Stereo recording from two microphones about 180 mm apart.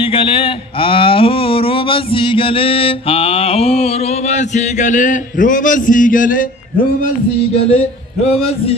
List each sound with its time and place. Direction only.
0.1 s speech: 30° left (ahead or behind); by 6.4 s 50° left (ahead or behind)
7.6 s speech: 35° left (ahead or behind)